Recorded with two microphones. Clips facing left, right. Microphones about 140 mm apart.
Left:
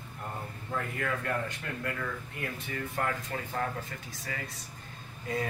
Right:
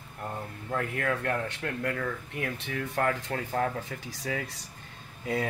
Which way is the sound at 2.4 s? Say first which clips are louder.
Right 4 dB; 85° right.